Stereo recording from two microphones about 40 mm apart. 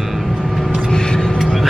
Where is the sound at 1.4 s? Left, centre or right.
Centre.